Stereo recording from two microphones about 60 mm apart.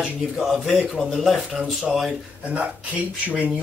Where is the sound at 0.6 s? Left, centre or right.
Centre.